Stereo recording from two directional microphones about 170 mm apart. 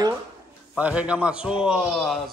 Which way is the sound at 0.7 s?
5° right (ahead or behind).